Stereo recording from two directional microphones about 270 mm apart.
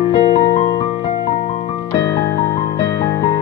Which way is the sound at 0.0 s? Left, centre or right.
Left.